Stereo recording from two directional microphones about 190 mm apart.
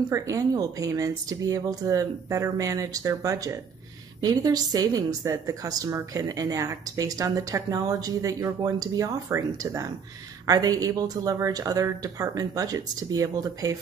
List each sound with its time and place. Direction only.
0.1 s a woman's voice: 15° right (ahead or behind)